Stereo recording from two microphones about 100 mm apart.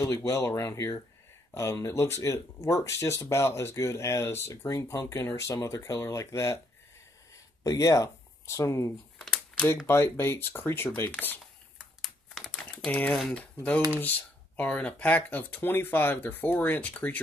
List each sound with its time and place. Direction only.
0.0 s speech: 30° left (ahead or behind)
7.6 s speech: 35° left (ahead or behind); by 11.3 s 20° left (ahead or behind)
12.0 s typing: 5° left (ahead or behind)
13.3 s speech: 15° left (ahead or behind)